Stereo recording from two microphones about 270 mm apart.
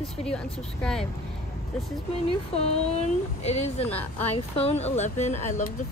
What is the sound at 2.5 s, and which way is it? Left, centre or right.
Speech, left.